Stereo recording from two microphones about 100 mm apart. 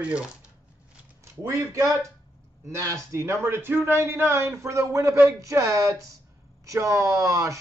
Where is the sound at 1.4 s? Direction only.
30° right (ahead or behind).